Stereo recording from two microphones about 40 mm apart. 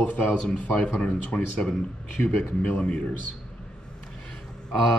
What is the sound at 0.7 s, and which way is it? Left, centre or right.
Speech, left.